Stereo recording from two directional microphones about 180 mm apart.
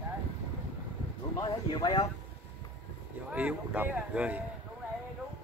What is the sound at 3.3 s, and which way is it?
Speech, 5° right (ahead or behind).